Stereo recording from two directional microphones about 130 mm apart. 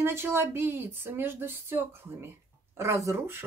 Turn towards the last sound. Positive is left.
turn(degrees=-15)  # may be behind; listen again after turning